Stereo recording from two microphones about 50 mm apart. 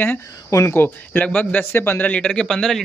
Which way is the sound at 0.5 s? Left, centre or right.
Left.